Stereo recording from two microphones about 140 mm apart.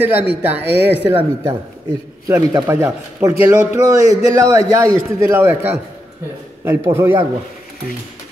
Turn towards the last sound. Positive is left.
turn(degrees=-15)  # may be behind; listen again after turning